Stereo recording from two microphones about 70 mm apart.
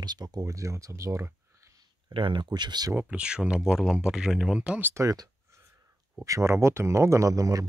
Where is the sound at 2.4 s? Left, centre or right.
Right.